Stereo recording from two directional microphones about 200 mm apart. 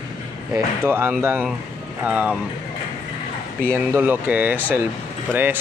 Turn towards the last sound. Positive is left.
turn(degrees=-10)  # may be behind; listen again after turning